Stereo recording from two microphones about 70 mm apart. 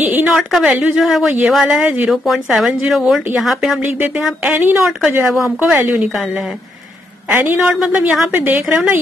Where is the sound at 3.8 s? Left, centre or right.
Right.